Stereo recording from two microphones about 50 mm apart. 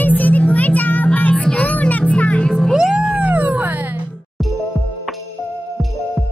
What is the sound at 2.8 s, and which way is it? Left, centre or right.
Cat, centre.